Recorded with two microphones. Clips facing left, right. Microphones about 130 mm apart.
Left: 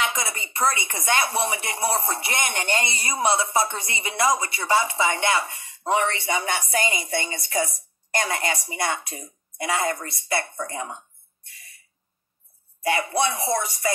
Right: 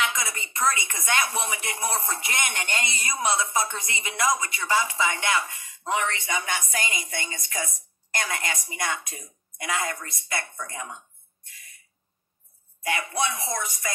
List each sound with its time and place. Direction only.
0.0 s speech: 35° left (ahead or behind)
12.8 s speech: 30° left (ahead or behind)